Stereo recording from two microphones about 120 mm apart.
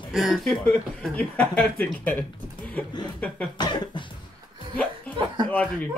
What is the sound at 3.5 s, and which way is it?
Cough, 40° left (ahead or behind).